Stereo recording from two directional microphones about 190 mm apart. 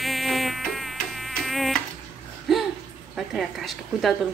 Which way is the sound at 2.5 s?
Centre (ahead or behind).